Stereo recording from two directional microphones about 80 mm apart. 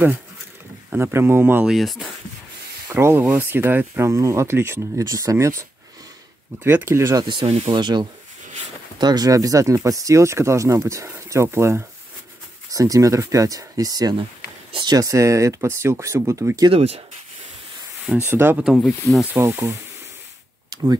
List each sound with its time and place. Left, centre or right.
0.8 s speech: right
1.7 s speech: centre
2.9 s speech: right
4.1 s speech: right
7.2 s speech: right
8.9 s speech: right
12.7 s speech: right
15.0 s speech: right
18.2 s speech: right
18.8 s speech: centre
19.4 s speech: right